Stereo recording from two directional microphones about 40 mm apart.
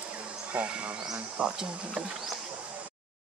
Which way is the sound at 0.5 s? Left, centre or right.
Right.